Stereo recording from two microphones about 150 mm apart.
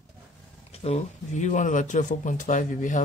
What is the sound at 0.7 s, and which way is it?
A man's voice, 45° left (ahead or behind).